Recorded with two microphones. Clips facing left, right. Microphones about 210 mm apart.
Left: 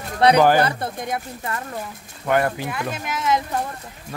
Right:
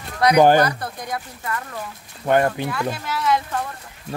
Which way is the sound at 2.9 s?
20° left (ahead or behind).